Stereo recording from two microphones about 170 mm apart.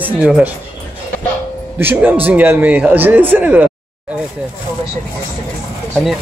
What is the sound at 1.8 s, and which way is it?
Speech, 10° right (ahead or behind).